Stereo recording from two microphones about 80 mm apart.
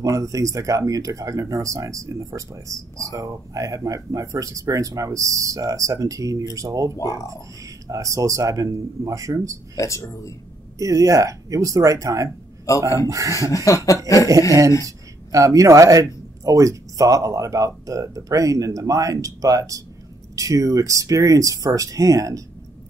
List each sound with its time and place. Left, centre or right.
0.0 s speech: right
6.9 s speech: left
7.6 s speech: right
9.8 s speech: left
10.8 s speech: right
13.7 s speech: left
14.0 s a sound: left
14.9 s speech: right